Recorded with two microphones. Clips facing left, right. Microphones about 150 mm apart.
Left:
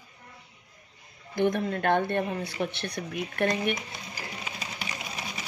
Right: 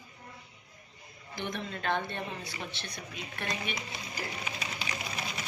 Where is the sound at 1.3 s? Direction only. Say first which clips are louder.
Left 11 dB; 55° left (ahead or behind).